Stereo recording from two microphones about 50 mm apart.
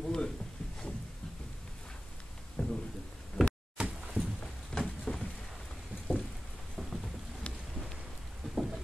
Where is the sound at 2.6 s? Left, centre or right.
Centre.